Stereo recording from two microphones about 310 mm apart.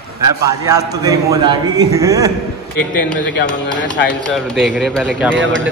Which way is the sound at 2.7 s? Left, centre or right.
Left.